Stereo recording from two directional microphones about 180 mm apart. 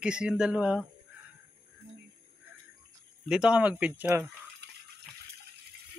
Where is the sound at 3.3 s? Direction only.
5° right (ahead or behind).